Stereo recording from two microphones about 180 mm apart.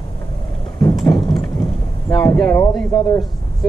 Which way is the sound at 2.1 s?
5° left (ahead or behind).